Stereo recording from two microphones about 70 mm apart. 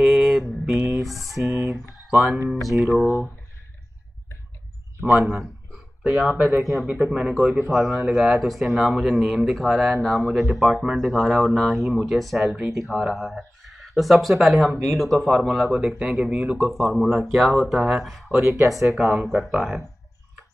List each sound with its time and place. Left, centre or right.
0.0 s mantra: centre
1.4 s a sound: right
2.0 s speech: centre
5.4 s speech: centre
18.4 s speech: right
18.9 s speech: centre